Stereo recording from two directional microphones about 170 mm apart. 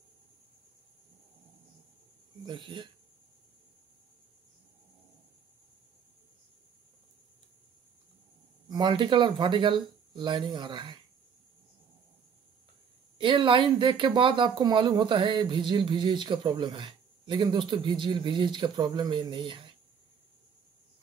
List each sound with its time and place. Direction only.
2.4 s speech: 25° right (ahead or behind)
8.6 s speech: 25° right (ahead or behind)
13.2 s speech: 30° right (ahead or behind)